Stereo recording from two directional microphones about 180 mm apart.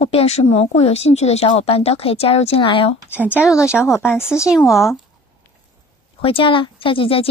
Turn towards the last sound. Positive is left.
turn(degrees=30)  # may be behind; listen again after turning